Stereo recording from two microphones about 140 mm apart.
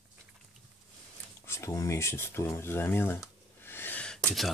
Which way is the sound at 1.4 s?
20° left (ahead or behind).